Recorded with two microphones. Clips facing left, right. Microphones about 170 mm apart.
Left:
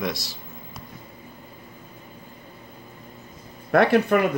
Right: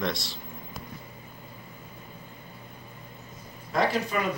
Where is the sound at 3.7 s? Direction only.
60° left (ahead or behind).